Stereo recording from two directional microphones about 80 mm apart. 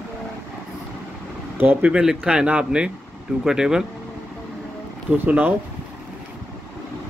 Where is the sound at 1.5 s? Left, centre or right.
Right.